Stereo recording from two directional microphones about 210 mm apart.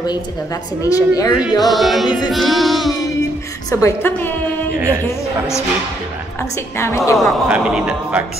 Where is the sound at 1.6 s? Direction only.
Centre (ahead or behind).